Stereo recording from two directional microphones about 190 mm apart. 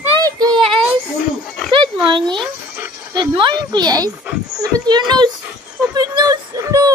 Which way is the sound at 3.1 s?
25° right (ahead or behind).